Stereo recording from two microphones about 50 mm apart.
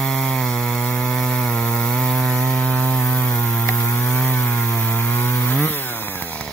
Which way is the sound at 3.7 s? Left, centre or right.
Left.